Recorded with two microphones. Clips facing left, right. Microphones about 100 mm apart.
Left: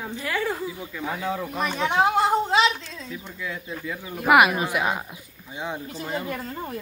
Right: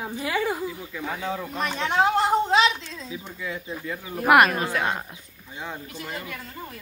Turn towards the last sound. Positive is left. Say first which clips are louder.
# left 6 dB
turn(degrees=35)  # may be behind; listen again after turning